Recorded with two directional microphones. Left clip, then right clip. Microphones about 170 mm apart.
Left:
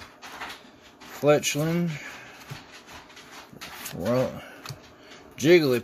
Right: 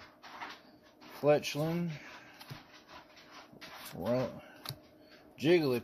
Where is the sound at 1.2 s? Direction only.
20° left (ahead or behind).